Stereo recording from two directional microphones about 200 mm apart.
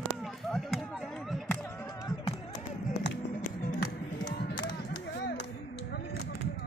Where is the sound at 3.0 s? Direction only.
50° left (ahead or behind).